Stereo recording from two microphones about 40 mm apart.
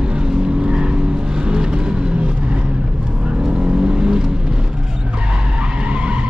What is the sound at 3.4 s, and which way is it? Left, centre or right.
Vehicle, centre.